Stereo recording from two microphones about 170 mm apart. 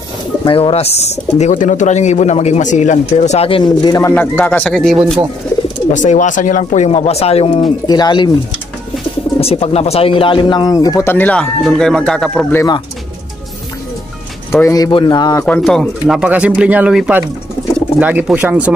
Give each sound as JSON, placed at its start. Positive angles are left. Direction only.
{"t": 0.5, "sound": "speech", "side_deg": 30}
{"t": 4.1, "sound": "speech", "side_deg": 10}
{"t": 5.9, "sound": "speech", "side_deg": 45}
{"t": 9.4, "sound": "speech", "side_deg": 35}
{"t": 12.5, "sound": "speech", "side_deg": 25}
{"t": 14.6, "sound": "speech", "side_deg": 20}
{"t": 15.4, "sound": "speech", "side_deg": 5}